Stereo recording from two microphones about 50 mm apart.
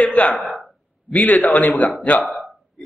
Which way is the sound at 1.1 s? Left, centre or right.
Left.